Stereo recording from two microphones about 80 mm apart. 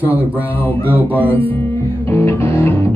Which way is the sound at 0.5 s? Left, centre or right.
Left.